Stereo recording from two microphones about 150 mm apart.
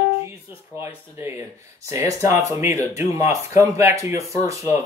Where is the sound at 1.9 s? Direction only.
20° right (ahead or behind).